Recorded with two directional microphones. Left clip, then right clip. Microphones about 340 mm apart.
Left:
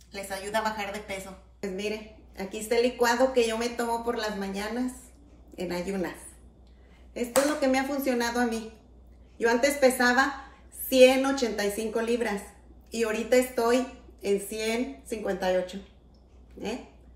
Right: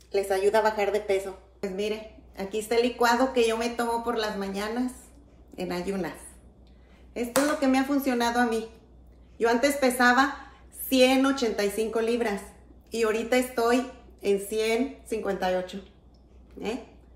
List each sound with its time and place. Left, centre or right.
0.1 s a woman's voice: right
7.2 s a woman's voice: centre